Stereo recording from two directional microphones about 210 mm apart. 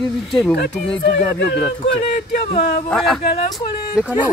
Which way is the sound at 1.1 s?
55° left (ahead or behind).